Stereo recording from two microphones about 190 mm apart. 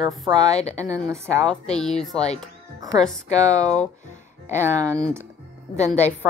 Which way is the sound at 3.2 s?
40° left (ahead or behind).